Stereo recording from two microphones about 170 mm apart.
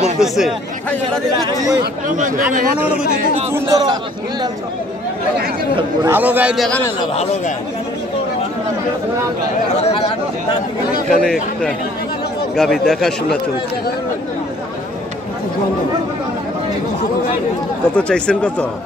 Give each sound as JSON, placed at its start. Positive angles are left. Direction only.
{"t": 0.2, "sound": "speech", "side_deg": 0}
{"t": 1.4, "sound": "a man's voice", "side_deg": -20}
{"t": 2.0, "sound": "speech", "side_deg": -50}
{"t": 3.5, "sound": "a man's voice", "side_deg": -20}
{"t": 6.0, "sound": "a man's voice", "side_deg": -10}
{"t": 11.1, "sound": "speech", "side_deg": 5}
{"t": 12.5, "sound": "speech", "side_deg": 5}
{"t": 17.9, "sound": "speech", "side_deg": 5}